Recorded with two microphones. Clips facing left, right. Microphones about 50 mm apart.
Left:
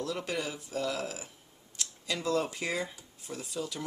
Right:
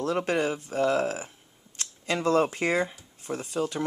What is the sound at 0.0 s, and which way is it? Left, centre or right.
Speech, right.